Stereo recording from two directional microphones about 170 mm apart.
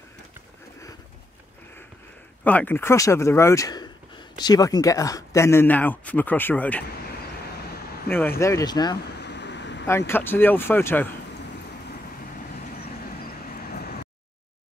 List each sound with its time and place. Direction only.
2.4 s speech: 10° left (ahead or behind)
7.7 s vehicle: 65° left (ahead or behind)
8.4 s speech: 20° left (ahead or behind)
9.0 s vehicle: 90° left
9.8 s speech: 15° left (ahead or behind)
13.5 s vehicle: 60° left (ahead or behind)